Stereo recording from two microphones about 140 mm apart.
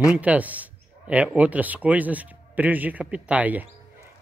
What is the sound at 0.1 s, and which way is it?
Speech, 10° right (ahead or behind).